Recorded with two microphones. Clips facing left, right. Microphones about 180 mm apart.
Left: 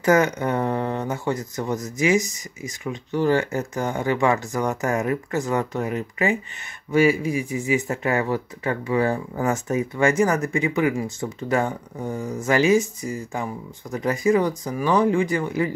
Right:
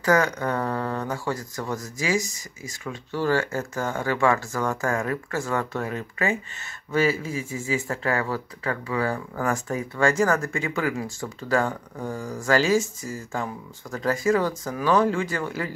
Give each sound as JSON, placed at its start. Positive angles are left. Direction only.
{"t": 0.0, "sound": "speech", "side_deg": 20}